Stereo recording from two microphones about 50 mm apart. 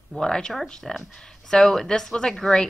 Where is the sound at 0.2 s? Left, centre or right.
Centre.